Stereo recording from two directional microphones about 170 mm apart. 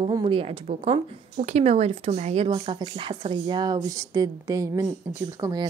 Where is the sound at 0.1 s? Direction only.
30° right (ahead or behind).